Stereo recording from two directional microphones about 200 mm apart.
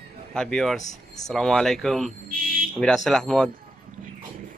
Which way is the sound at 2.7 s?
5° left (ahead or behind).